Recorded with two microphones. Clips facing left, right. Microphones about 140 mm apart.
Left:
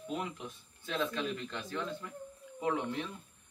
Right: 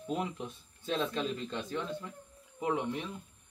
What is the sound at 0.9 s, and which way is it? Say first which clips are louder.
Speech: right 2 dB; 25° right (ahead or behind).